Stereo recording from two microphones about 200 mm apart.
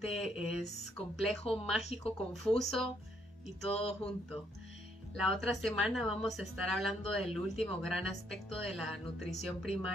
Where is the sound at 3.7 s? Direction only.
30° left (ahead or behind).